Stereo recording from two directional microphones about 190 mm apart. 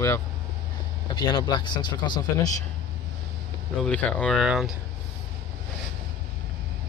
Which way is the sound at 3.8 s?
5° left (ahead or behind).